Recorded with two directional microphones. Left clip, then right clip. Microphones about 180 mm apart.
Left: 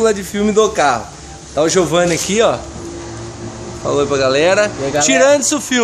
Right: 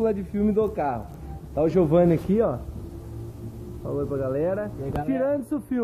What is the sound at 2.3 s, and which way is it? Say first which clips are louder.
Speech: left 10 dB; 5° left (ahead or behind).